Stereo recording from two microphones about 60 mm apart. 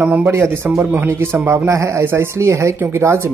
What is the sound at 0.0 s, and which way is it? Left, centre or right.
Speech, right.